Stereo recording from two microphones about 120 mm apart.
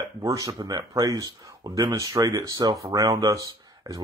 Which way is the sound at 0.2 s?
30° right (ahead or behind).